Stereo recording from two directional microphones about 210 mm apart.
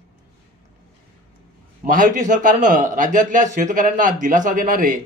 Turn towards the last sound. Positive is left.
turn(degrees=-40)  # may be behind; listen again after turning